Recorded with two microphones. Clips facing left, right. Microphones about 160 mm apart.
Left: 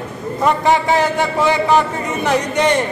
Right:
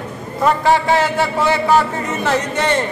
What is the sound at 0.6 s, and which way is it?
A man's voice, 15° left (ahead or behind).